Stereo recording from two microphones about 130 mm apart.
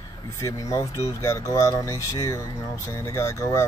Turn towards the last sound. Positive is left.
turn(degrees=20)  # may be behind; listen again after turning